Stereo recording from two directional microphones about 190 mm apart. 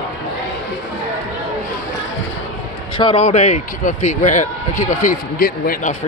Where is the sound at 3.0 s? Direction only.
30° left (ahead or behind).